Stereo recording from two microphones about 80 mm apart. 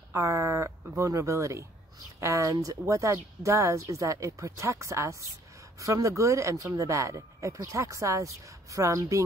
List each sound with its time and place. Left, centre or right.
0.1 s speech: right